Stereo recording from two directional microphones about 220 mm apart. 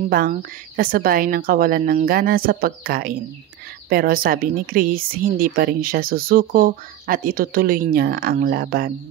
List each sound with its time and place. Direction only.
0.1 s speech: 40° right (ahead or behind)